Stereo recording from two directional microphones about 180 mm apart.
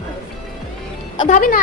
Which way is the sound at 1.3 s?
50° left (ahead or behind).